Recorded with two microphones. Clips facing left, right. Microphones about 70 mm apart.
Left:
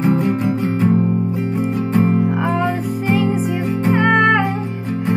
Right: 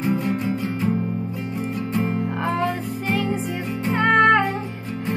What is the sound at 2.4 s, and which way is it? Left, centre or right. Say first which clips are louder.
Music: left 4 dB; centre.